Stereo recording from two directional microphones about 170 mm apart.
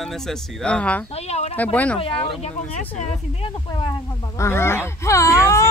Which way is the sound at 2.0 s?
35° left (ahead or behind).